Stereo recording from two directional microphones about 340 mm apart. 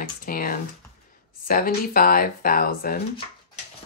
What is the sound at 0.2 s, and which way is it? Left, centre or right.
Computer keyboard, left.